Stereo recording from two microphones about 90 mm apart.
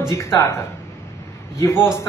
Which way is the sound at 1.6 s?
30° left (ahead or behind).